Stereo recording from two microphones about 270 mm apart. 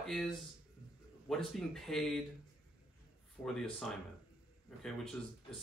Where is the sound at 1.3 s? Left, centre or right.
Centre.